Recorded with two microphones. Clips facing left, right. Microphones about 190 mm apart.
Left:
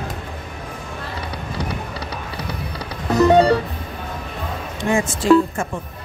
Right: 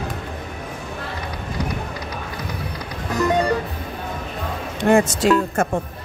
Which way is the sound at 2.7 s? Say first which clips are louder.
Left 7 dB; 35° left (ahead or behind).